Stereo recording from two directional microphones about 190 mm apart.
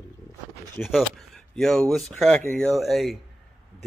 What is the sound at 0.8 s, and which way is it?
Speech, centre (ahead or behind).